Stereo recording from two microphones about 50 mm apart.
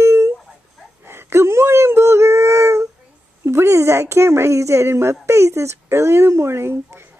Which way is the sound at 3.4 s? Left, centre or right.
Right.